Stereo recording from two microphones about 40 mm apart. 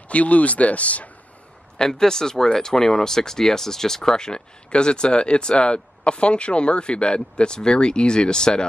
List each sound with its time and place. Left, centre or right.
0.1 s speech: left
1.8 s speech: centre